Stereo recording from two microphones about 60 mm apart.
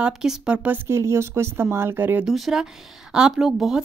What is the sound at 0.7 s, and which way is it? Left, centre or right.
Speech, right.